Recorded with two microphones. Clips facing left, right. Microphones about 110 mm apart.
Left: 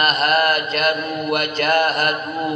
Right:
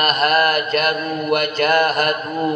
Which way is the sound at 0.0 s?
45° right (ahead or behind).